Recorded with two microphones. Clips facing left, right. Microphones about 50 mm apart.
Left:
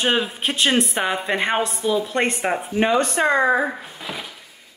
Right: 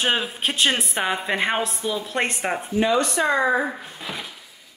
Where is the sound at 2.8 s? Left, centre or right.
Left.